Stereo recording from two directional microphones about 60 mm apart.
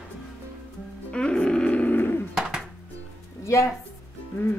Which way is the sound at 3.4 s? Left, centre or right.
Left.